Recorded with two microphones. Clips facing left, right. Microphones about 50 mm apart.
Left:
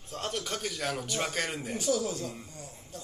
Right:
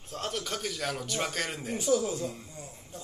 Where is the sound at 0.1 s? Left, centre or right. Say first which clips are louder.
Even; centre.